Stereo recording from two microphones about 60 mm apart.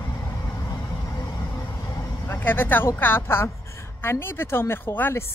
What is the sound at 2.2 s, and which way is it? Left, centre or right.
Speech, left.